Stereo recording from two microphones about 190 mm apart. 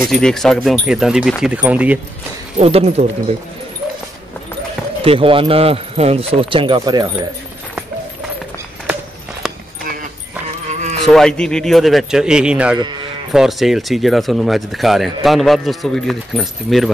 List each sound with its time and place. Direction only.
0.1 s speech: centre (ahead or behind)
2.6 s speech: 35° right (ahead or behind)
5.0 s speech: 30° right (ahead or behind)
10.7 s music: 40° right (ahead or behind)
11.1 s speech: 5° left (ahead or behind)